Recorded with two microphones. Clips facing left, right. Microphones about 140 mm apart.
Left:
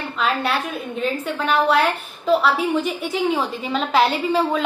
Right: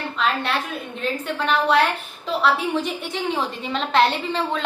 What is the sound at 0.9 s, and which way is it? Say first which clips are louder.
A woman's voice: left 2 dB; centre (ahead or behind).